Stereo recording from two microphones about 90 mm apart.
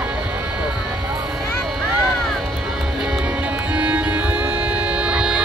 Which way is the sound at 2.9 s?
10° right (ahead or behind).